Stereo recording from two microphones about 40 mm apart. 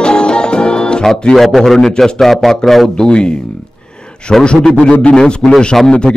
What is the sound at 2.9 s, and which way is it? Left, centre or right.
Speech, left.